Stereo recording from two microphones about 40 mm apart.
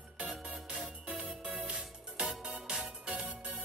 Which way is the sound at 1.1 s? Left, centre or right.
Right.